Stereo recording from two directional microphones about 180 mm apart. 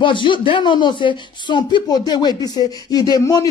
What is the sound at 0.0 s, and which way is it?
Speech, 25° left (ahead or behind).